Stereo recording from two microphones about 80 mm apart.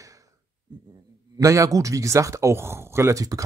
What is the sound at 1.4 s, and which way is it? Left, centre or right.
Speech, right.